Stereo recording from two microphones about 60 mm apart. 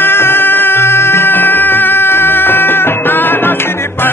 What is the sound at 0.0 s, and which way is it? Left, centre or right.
Music, left.